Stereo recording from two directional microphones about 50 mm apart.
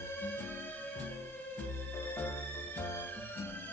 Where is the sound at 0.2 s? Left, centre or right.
Left.